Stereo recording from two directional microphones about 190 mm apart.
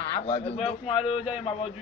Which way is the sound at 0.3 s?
30° left (ahead or behind).